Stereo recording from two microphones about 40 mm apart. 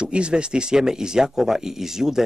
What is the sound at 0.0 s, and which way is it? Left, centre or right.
Speech, right.